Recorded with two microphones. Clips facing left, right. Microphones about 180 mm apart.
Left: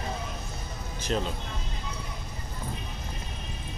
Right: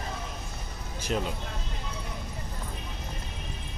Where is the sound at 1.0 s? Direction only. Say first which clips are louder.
Left 1 dB; 10° right (ahead or behind).